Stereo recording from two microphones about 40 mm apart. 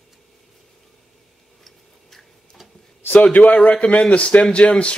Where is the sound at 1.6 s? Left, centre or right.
Centre.